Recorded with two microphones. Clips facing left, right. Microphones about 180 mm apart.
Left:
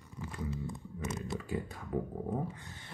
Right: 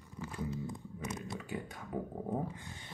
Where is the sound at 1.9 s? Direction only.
15° right (ahead or behind).